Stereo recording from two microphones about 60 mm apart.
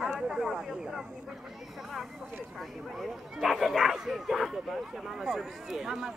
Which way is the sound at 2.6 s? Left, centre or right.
Centre.